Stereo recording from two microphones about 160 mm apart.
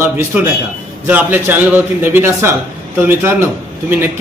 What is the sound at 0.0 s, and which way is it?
A man's voice, 15° right (ahead or behind).